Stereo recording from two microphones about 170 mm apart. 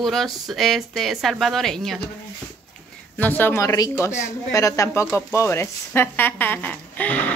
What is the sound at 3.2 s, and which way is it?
Speech, 10° left (ahead or behind).